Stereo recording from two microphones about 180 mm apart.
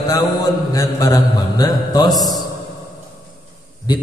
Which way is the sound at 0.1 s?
20° left (ahead or behind).